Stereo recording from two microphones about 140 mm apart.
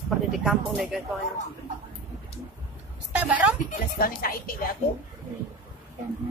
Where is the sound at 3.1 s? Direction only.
10° right (ahead or behind).